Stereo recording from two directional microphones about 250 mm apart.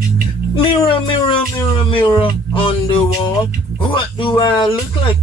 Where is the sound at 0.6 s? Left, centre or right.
Left.